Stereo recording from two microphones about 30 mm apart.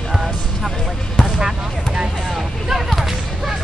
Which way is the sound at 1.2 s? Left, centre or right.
Centre.